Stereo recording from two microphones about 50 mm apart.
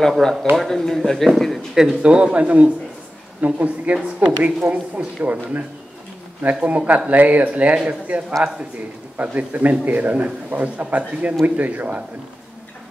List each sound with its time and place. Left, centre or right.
0.2 s speech: centre
1.8 s a woman's voice: centre; by 5.6 s right
6.6 s a woman's voice: right